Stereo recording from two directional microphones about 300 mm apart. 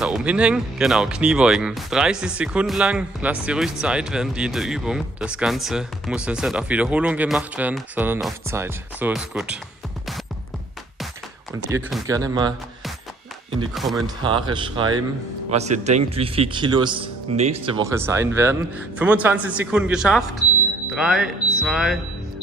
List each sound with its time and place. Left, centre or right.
0.0 s speech: centre
11.5 s speech: centre
13.7 s speech: centre
14.0 s speech: centre